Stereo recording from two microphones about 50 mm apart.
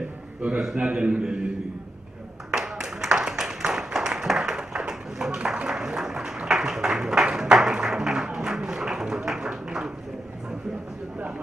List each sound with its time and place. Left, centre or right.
0.6 s a man's voice: centre
0.8 s a man's voice: right
2.5 s a sound: centre
7.5 s tap: centre